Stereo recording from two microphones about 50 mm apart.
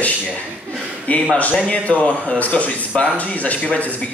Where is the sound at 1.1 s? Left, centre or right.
Left.